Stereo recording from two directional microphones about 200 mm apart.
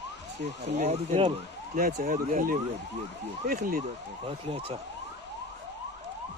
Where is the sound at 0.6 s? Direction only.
35° right (ahead or behind).